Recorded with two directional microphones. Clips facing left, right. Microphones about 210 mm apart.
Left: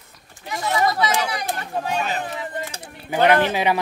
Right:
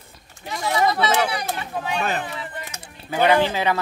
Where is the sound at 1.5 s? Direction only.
40° left (ahead or behind).